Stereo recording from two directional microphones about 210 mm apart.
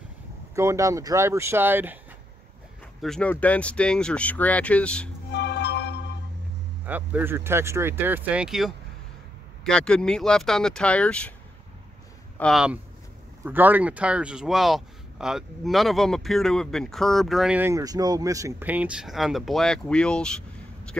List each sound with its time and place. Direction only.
0.6 s speech: 15° right (ahead or behind)
3.0 s speech: 5° left (ahead or behind)
5.3 s music: 55° left (ahead or behind)
6.9 s speech: 10° right (ahead or behind)
12.4 s speech: centre (ahead or behind)